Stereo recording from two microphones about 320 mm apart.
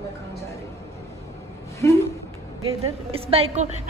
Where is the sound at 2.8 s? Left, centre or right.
Centre.